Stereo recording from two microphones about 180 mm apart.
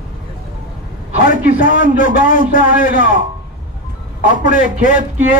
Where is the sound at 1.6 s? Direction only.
50° left (ahead or behind).